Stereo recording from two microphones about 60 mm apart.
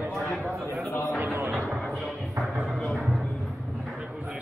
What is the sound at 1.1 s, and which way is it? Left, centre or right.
Music, right.